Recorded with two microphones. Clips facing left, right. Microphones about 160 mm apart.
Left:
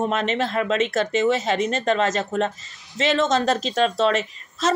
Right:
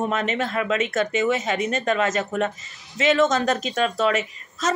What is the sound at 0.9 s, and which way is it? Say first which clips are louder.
A woman's voice: left 1 dB; 30° left (ahead or behind).